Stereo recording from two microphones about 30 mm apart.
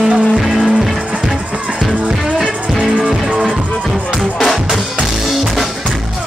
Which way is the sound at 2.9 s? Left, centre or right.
Right.